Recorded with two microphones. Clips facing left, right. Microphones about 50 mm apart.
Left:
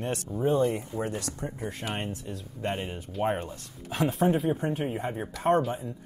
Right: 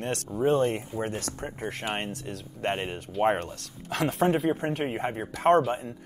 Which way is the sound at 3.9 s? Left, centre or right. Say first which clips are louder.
Right 1 dB; right.